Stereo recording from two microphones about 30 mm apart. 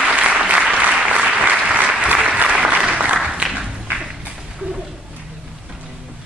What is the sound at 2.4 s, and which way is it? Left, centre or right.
Applause, right.